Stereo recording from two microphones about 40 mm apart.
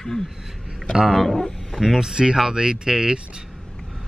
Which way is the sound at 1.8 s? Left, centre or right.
Centre.